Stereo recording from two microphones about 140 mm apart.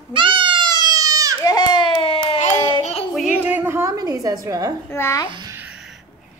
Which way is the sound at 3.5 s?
15° right (ahead or behind).